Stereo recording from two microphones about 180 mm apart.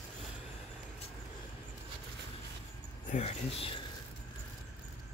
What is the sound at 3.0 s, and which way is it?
Speech, 40° left (ahead or behind).